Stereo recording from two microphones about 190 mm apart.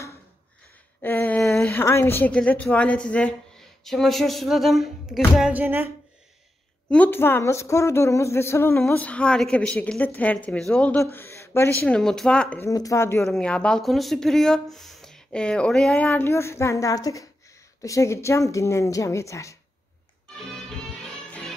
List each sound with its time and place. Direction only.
1.0 s a woman's voice: 10° left (ahead or behind); by 5.9 s 10° right (ahead or behind)
6.9 s speech: 10° left (ahead or behind)
20.3 s music: centre (ahead or behind)